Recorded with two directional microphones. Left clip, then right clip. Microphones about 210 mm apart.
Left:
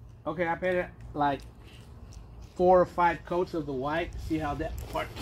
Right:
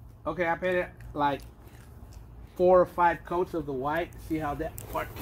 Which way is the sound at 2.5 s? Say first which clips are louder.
Right 1 dB; 30° left (ahead or behind).